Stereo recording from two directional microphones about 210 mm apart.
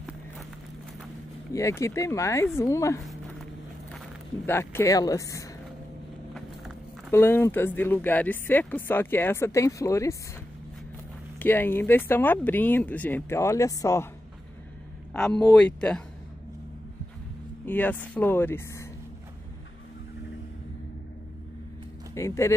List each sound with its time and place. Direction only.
1.5 s speech: 15° left (ahead or behind)
3.1 s a sound: centre (ahead or behind)
4.5 s speech: 10° left (ahead or behind)
7.1 s speech: 10° left (ahead or behind)
11.3 s speech: 10° left (ahead or behind)
15.1 s speech: 5° left (ahead or behind)
17.6 s speech: 10° left (ahead or behind)
22.1 s speech: 15° left (ahead or behind)